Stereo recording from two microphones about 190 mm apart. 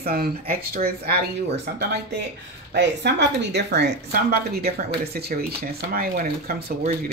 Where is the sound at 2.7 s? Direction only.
60° right (ahead or behind).